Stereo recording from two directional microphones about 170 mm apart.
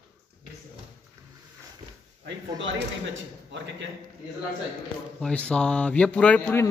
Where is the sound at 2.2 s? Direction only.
90° right.